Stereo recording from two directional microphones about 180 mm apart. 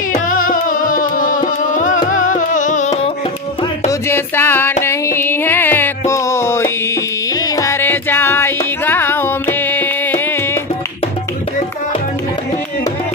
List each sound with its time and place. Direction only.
0.1 s music: 50° left (ahead or behind)
3.8 s music: 15° left (ahead or behind)